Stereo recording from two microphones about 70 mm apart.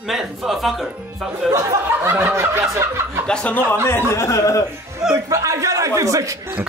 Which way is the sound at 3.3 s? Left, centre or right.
Centre.